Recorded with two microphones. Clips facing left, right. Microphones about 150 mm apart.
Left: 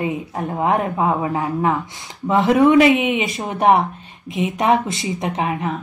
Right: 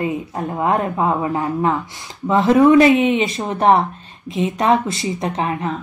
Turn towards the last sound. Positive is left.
turn(degrees=15)  # may be behind; listen again after turning